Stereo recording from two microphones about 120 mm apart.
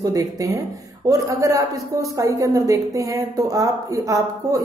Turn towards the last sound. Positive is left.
turn(degrees=-25)  # may be behind; listen again after turning